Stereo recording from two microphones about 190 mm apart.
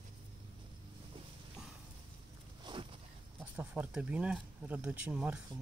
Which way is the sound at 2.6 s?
25° right (ahead or behind).